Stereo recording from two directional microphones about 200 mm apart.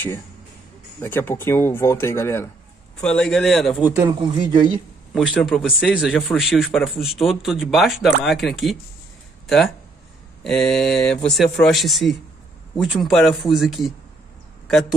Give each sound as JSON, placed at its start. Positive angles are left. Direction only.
{"t": 1.0, "sound": "speech", "side_deg": 10}
{"t": 4.1, "sound": "speech", "side_deg": -25}
{"t": 5.1, "sound": "speech", "side_deg": 0}
{"t": 10.4, "sound": "speech", "side_deg": 0}